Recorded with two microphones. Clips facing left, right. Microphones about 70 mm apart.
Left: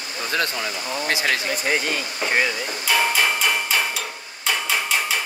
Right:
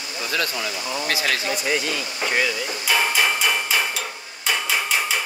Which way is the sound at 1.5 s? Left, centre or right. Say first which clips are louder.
Left 1 dB; left.